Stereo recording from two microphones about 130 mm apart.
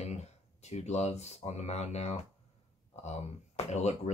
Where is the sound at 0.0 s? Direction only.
60° left (ahead or behind).